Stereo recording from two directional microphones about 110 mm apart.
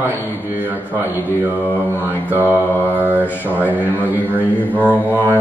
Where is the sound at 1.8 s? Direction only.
15° right (ahead or behind).